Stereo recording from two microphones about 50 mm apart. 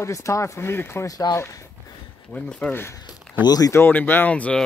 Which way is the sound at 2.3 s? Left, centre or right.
Centre.